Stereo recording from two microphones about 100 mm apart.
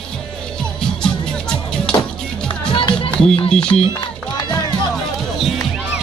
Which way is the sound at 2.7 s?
55° left (ahead or behind).